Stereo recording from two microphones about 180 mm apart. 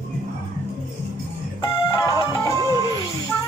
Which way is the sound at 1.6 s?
20° left (ahead or behind).